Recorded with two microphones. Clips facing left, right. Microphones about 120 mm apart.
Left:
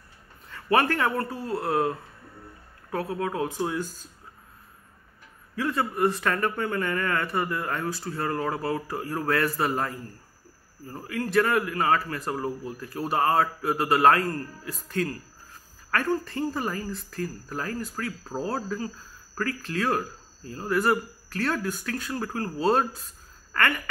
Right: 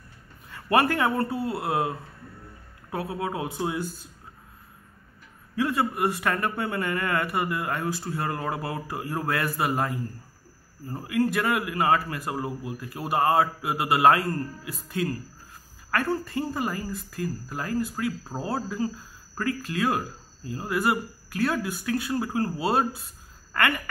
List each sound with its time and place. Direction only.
0.5 s speech: 15° right (ahead or behind)
5.6 s speech: 15° right (ahead or behind)